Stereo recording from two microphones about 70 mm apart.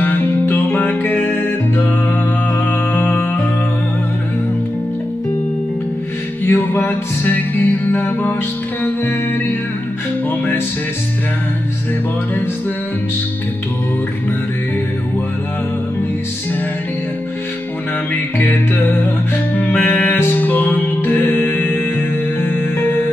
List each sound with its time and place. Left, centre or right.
0.0 s music: left
6.4 s music: left
18.1 s music: left